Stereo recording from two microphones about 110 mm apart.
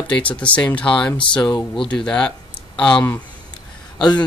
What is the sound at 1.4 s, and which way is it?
Speech, 35° left (ahead or behind).